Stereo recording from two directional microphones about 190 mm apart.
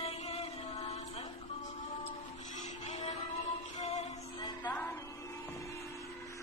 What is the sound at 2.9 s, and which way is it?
Music, 35° left (ahead or behind).